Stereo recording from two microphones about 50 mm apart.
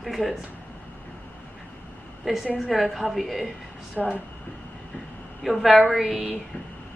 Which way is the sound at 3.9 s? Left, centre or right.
Right.